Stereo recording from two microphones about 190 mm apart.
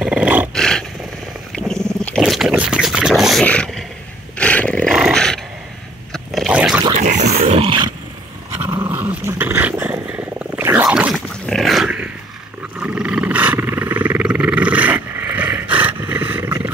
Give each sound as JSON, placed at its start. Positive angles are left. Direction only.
{"t": 0.0, "sound": "roar", "side_deg": -5}
{"t": 0.6, "sound": "roar", "side_deg": 5}
{"t": 1.5, "sound": "wild animals", "side_deg": 5}
{"t": 4.4, "sound": "dog", "side_deg": 5}
{"t": 6.1, "sound": "a sound", "side_deg": 0}
{"t": 7.0, "sound": "dog", "side_deg": -40}
{"t": 8.5, "sound": "dog", "side_deg": -15}
{"t": 12.7, "sound": "roar", "side_deg": -5}